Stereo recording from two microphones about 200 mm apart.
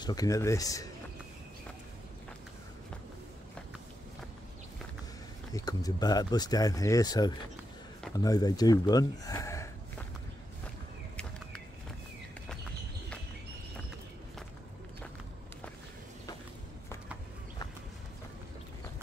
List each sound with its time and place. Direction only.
0.0 s speech: 20° left (ahead or behind)
5.5 s speech: 20° left (ahead or behind)